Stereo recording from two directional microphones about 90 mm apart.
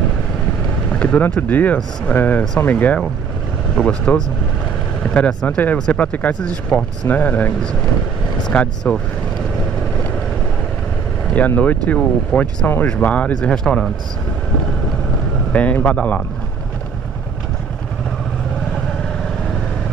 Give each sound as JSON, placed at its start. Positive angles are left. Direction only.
{"t": 0.9, "sound": "speech", "side_deg": 15}
{"t": 11.3, "sound": "speech", "side_deg": 15}
{"t": 15.5, "sound": "speech", "side_deg": 15}